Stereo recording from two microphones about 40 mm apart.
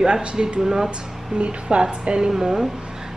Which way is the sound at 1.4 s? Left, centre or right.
Right.